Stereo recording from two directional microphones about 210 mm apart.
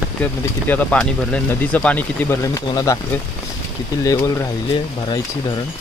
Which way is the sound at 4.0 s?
15° left (ahead or behind).